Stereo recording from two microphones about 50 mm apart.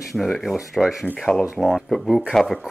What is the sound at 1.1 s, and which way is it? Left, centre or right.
Speech, centre.